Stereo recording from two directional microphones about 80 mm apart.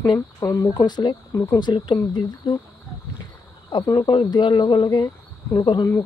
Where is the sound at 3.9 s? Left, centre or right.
Left.